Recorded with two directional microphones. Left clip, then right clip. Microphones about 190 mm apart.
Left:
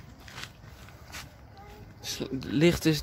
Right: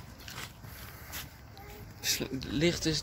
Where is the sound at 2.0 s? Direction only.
5° left (ahead or behind).